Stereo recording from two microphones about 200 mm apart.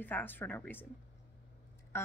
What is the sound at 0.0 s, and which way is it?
Speech, 10° left (ahead or behind).